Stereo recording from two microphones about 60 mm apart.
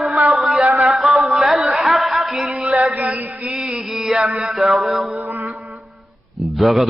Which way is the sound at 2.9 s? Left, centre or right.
Right.